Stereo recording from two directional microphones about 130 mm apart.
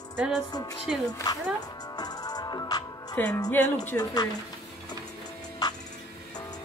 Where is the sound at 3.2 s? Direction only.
15° left (ahead or behind).